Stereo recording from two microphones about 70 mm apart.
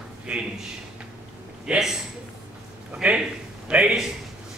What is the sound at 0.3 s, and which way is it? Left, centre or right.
Speech, centre.